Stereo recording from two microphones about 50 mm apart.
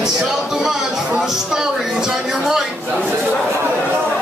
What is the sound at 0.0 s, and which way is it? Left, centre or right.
Music, centre.